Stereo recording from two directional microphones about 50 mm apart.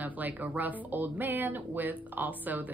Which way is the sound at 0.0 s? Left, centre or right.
Right.